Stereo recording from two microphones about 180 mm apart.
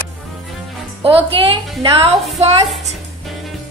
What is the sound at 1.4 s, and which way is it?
Speech, 30° right (ahead or behind).